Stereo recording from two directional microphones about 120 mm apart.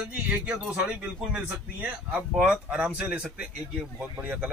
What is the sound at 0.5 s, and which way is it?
A man's voice, 10° right (ahead or behind).